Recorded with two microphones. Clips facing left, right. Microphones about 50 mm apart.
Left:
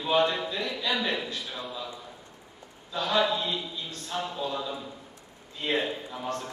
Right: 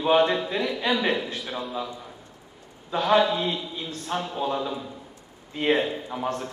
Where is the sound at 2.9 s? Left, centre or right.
Right.